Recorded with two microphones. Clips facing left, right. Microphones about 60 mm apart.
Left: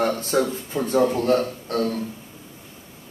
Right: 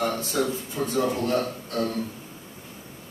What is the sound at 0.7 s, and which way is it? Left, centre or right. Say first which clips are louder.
Speech: left 7 dB; left.